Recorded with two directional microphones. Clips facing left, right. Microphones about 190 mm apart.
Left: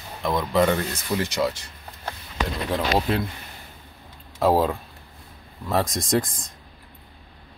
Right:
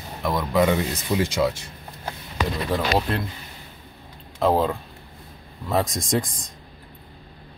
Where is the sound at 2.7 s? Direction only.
Centre (ahead or behind).